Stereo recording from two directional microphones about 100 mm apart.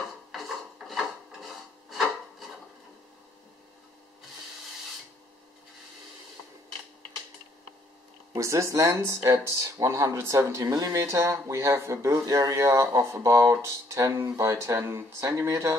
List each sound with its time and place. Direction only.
0.3 s rub: centre (ahead or behind)
8.3 s speech: 30° right (ahead or behind)